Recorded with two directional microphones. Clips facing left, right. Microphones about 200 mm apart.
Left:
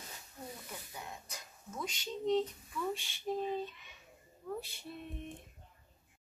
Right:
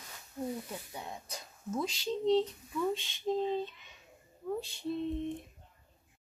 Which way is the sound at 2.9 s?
20° right (ahead or behind).